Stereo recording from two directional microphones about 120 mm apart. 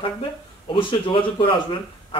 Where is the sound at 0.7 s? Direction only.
45° left (ahead or behind).